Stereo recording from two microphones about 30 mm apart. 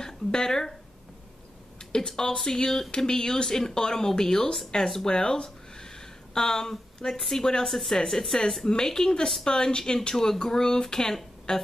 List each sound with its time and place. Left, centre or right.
0.0 s speech: centre
1.8 s speech: left
10.1 s speech: centre